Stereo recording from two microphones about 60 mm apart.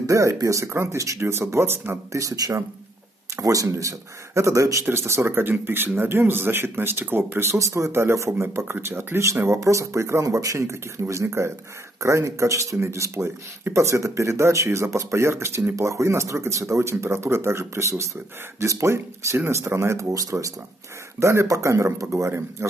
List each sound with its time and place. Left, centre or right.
0.0 s speech: right
2.1 s speech: right
3.7 s speech: right
4.8 s speech: right
7.5 s speech: right
21.2 s speech: right